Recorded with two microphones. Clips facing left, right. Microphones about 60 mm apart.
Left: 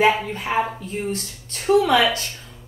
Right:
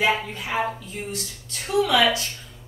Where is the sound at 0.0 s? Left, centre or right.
Left.